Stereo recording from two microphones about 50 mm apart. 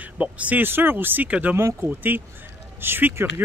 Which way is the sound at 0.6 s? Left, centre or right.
Right.